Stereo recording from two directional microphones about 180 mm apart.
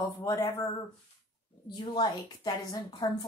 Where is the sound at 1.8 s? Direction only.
25° left (ahead or behind).